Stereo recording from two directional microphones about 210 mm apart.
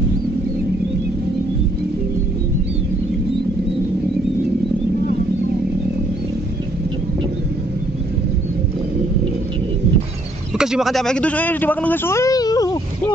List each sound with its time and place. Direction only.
10.6 s a man's voice: centre (ahead or behind); by 13.1 s 15° left (ahead or behind)